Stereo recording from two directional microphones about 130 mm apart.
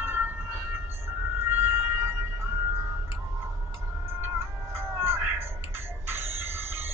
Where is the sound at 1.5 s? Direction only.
15° right (ahead or behind).